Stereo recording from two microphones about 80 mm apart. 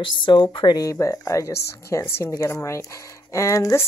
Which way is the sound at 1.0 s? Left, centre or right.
Left.